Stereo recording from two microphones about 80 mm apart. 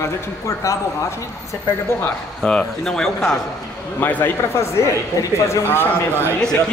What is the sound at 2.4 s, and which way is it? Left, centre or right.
Speech, centre.